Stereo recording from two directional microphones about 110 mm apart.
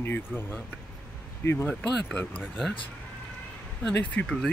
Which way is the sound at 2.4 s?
5° right (ahead or behind).